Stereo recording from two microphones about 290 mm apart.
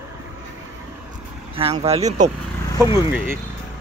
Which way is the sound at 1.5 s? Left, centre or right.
Centre.